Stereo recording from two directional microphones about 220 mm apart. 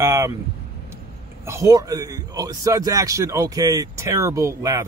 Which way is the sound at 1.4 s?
15° right (ahead or behind).